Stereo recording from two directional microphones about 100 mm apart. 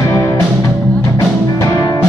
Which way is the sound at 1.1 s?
35° left (ahead or behind).